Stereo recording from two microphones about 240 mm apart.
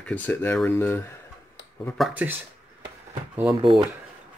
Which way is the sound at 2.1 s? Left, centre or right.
Centre.